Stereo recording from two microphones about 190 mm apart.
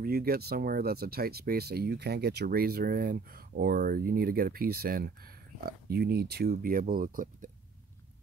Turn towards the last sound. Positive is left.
turn(degrees=-45)  # may be behind; listen again after turning